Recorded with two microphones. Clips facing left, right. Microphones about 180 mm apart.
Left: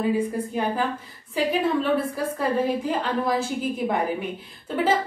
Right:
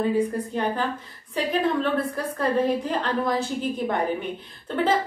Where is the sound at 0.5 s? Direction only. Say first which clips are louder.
Left 1 dB; 5° left (ahead or behind).